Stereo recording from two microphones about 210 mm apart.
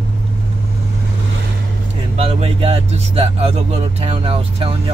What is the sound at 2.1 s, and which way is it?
Speech, 30° right (ahead or behind).